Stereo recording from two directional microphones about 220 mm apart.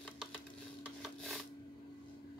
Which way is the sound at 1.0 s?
Centre (ahead or behind).